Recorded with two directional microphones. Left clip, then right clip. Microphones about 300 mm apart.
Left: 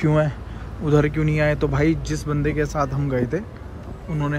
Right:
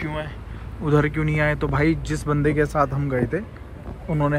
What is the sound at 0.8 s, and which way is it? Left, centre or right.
Speech, centre.